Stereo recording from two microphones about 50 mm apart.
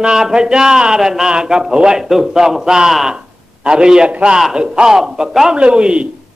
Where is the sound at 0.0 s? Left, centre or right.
Centre.